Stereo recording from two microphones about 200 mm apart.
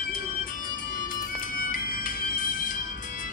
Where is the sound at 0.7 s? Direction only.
45° left (ahead or behind).